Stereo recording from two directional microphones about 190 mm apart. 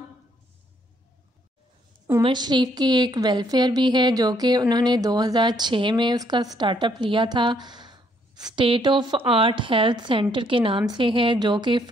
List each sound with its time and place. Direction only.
2.2 s a woman's voice: 25° right (ahead or behind)